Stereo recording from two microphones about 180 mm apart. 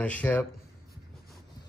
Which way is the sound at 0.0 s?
10° left (ahead or behind).